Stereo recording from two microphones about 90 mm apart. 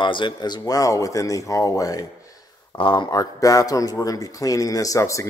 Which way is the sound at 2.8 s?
65° left (ahead or behind).